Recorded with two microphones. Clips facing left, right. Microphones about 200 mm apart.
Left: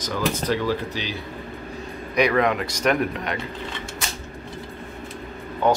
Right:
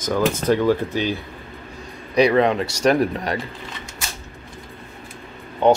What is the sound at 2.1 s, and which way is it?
Speech, 30° right (ahead or behind).